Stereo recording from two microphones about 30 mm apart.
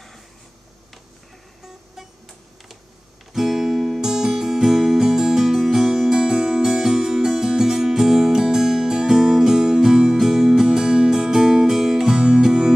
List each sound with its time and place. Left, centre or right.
3.3 s music: centre
12.2 s music: right